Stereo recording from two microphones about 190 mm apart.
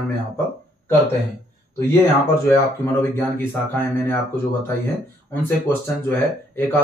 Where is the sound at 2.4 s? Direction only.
10° left (ahead or behind).